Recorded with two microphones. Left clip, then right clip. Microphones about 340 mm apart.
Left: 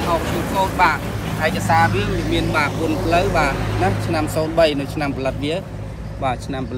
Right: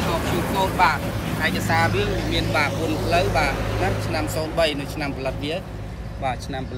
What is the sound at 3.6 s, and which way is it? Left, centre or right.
Speech, left.